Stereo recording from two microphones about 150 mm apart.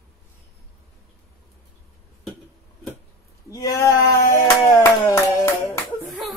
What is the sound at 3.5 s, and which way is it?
Speech, 20° left (ahead or behind).